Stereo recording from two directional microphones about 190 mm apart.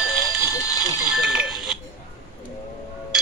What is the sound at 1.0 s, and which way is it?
Bicycle bell, 5° right (ahead or behind).